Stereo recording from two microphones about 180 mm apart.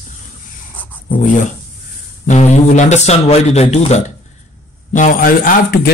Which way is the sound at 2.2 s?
40° left (ahead or behind).